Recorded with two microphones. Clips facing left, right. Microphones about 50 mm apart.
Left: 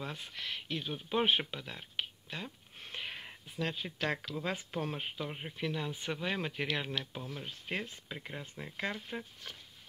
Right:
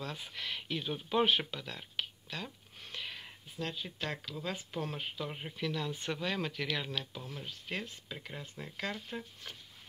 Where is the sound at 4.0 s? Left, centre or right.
Left.